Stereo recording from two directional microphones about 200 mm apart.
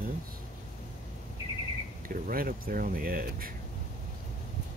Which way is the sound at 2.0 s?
45° right (ahead or behind).